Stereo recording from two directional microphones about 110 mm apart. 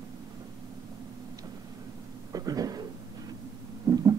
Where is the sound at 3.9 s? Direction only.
30° right (ahead or behind).